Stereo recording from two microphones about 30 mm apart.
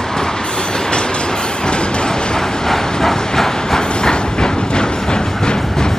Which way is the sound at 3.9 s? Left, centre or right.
Left.